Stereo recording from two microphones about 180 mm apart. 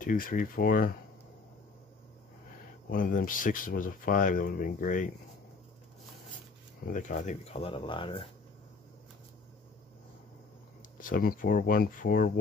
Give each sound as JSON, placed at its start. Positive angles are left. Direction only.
{"t": 0.0, "sound": "speech", "side_deg": 50}
{"t": 2.9, "sound": "speech", "side_deg": 50}
{"t": 6.9, "sound": "speech", "side_deg": 45}
{"t": 11.0, "sound": "speech", "side_deg": 50}